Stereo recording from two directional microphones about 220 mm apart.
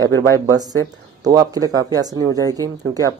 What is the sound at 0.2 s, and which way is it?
A man's voice, 15° right (ahead or behind).